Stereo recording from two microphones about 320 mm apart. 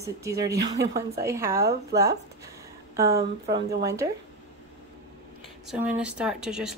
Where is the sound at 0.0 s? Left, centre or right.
Centre.